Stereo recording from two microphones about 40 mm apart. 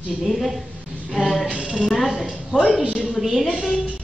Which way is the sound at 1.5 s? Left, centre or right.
Centre.